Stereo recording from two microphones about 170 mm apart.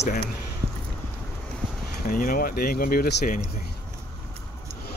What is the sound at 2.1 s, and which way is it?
Speech, 55° left (ahead or behind).